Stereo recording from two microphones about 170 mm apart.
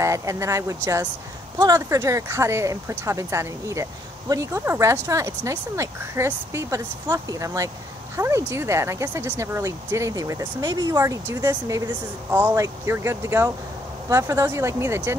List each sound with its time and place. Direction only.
0.0 s speech: 20° right (ahead or behind)